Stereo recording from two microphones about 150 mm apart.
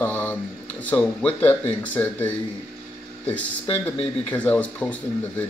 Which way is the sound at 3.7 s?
10° left (ahead or behind).